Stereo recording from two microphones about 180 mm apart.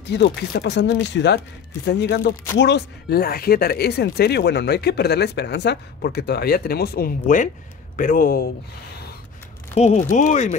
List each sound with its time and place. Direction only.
0.0 s speech: 70° left (ahead or behind)
9.8 s speech: 40° left (ahead or behind)